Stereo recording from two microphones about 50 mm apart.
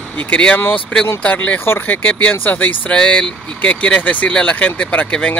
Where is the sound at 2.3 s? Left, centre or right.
Left.